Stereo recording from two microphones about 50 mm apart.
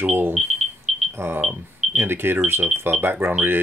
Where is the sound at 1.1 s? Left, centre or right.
Right.